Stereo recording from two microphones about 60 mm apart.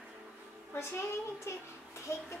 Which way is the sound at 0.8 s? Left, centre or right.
Left.